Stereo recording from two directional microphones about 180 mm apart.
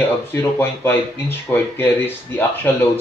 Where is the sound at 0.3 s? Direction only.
15° left (ahead or behind).